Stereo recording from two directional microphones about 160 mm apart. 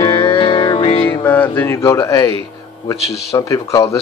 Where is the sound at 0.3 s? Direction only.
35° left (ahead or behind).